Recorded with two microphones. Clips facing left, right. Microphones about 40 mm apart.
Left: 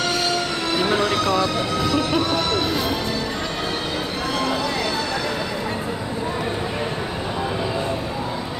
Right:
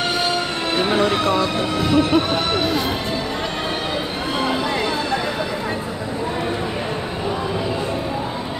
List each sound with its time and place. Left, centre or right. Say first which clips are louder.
0.3 s speech: right 1 dB; right